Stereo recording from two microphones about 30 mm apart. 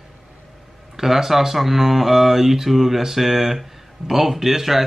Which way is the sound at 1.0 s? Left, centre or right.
Centre.